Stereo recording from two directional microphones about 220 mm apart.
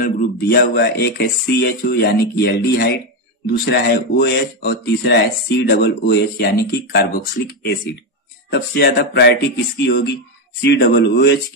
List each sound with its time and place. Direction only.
0.0 s speech: 45° left (ahead or behind)